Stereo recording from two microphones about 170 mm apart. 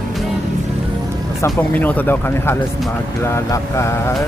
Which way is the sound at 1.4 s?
10° left (ahead or behind).